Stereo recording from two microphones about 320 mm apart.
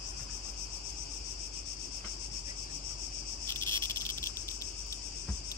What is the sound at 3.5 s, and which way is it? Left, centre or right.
Cricket, centre.